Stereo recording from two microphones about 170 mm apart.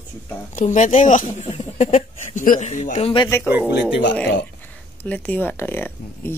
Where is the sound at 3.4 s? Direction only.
10° right (ahead or behind).